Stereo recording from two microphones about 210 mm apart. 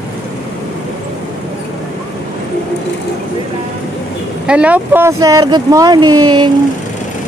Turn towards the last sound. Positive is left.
turn(degrees=-20)  # may be behind; listen again after turning